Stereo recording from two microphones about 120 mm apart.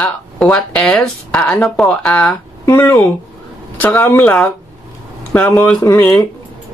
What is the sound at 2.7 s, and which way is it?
Speech, 25° left (ahead or behind).